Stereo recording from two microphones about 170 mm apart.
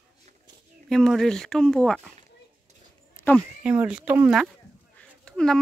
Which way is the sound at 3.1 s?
10° left (ahead or behind).